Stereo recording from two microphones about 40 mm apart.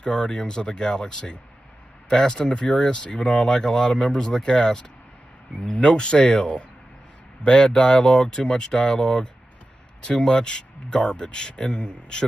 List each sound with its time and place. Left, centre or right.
0.0 s speech: left